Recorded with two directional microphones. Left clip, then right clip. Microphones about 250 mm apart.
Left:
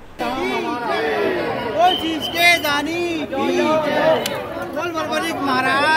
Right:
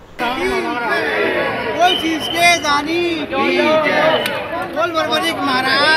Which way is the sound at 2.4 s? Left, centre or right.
Left.